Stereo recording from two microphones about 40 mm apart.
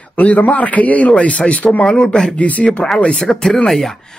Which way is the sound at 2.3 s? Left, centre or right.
Left.